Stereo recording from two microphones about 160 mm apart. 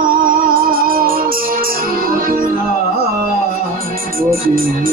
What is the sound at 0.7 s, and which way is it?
Music, 65° right (ahead or behind).